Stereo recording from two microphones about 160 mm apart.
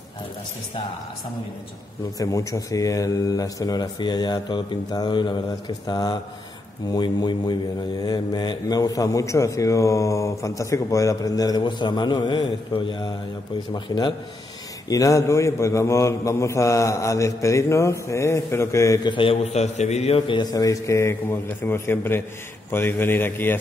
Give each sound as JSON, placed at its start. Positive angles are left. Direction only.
{"t": 2.1, "sound": "a man's voice", "side_deg": 20}
{"t": 19.0, "sound": "a man's voice", "side_deg": 35}